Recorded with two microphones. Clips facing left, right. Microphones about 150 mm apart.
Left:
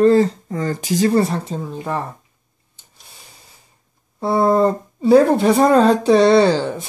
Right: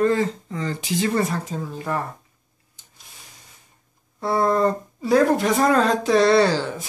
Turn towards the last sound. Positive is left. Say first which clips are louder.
# left 4 dB
turn(degrees=25)  # may be behind; listen again after turning